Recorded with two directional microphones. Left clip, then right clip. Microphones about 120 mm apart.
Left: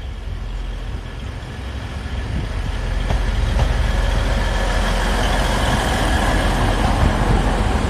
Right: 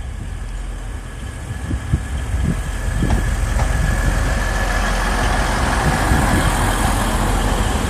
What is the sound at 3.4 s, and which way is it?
Vehicle, 30° left (ahead or behind).